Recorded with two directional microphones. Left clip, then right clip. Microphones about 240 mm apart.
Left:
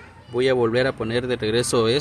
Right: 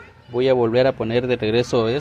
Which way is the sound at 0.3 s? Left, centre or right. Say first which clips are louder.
Right 2 dB; centre.